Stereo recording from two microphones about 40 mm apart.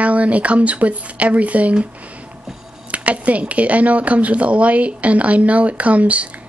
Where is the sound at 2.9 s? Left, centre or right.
Right.